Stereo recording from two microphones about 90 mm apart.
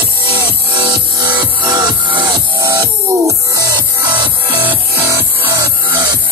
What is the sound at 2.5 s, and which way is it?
Music, 40° right (ahead or behind).